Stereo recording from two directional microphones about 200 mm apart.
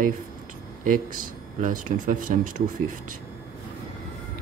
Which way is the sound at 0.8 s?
40° right (ahead or behind).